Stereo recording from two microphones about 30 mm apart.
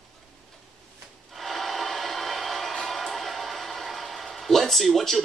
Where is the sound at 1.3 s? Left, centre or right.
Centre.